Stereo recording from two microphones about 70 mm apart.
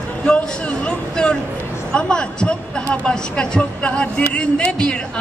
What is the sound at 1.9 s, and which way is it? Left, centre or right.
A woman's voice, centre.